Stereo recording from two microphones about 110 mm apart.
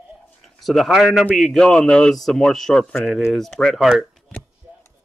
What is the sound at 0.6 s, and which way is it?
Speech, centre (ahead or behind).